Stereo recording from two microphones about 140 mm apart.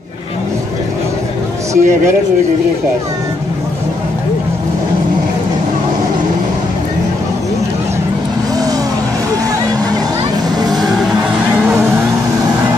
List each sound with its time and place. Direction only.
1.7 s speech: 20° right (ahead or behind)
10.6 s music: 30° right (ahead or behind)